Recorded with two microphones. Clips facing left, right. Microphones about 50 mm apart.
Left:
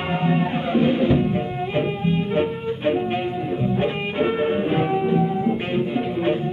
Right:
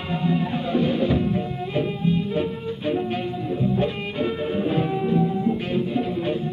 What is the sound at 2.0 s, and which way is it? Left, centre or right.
Music, left.